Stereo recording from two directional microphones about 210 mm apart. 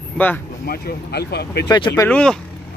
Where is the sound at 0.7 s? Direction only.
50° left (ahead or behind).